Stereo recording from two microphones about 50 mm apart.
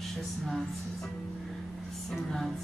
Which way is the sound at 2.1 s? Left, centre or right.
Centre.